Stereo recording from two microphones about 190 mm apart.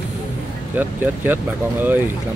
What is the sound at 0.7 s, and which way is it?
Speech, 10° right (ahead or behind).